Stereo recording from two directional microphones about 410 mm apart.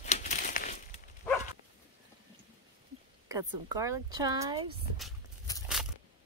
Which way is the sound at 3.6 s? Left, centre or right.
Centre.